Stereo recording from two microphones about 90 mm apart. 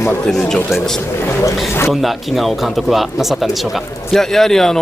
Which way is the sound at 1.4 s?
25° left (ahead or behind).